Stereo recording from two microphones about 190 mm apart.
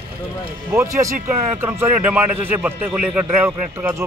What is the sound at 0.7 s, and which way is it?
Speech, 15° right (ahead or behind).